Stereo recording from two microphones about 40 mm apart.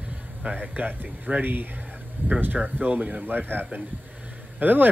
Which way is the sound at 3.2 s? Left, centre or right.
Right.